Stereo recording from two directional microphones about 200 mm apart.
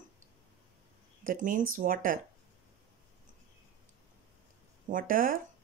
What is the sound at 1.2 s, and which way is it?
Speech, 40° right (ahead or behind).